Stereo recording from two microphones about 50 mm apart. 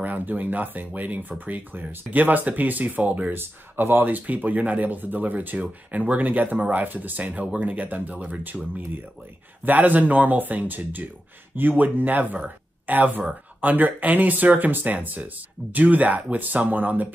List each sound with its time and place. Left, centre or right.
0.0 s speech: right
3.3 s speech: right
9.7 s speech: right